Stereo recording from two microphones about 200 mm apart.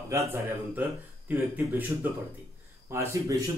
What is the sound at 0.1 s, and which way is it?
Speech, 15° right (ahead or behind).